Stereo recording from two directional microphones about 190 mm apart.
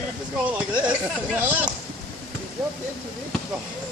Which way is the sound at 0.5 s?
10° right (ahead or behind).